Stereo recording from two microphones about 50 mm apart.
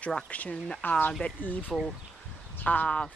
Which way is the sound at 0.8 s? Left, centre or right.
Left.